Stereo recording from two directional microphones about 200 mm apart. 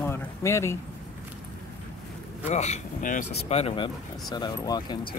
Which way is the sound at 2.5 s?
35° left (ahead or behind).